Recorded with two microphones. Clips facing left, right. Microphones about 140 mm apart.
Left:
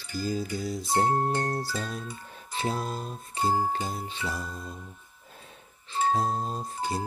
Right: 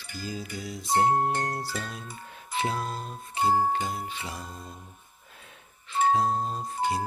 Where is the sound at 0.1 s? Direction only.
40° left (ahead or behind).